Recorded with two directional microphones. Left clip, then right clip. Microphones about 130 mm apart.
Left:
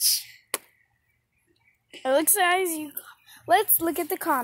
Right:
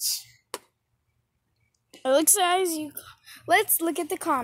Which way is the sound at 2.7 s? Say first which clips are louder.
Right 1 dB; 15° right (ahead or behind).